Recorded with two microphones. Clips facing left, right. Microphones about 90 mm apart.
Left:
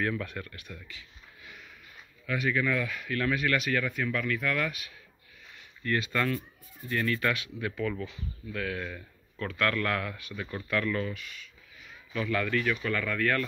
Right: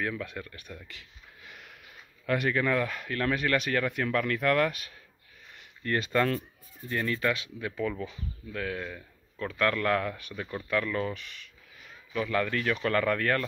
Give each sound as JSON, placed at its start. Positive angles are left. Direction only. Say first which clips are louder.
{"t": 0.0, "sound": "speech", "louder": "left 2 dB", "side_deg": -10}
{"t": 2.2, "sound": "speech", "louder": "right 2 dB", "side_deg": -50}
{"t": 6.1, "sound": "speech", "louder": "right 3 dB", "side_deg": -30}
{"t": 8.8, "sound": "a sound", "louder": "even", "side_deg": -10}
{"t": 9.5, "sound": "speech", "louder": "right 3 dB", "side_deg": -25}